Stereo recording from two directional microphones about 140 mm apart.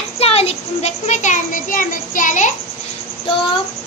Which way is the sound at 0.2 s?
45° left (ahead or behind).